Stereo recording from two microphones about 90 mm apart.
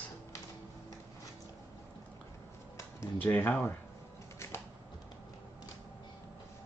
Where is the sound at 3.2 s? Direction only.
20° left (ahead or behind).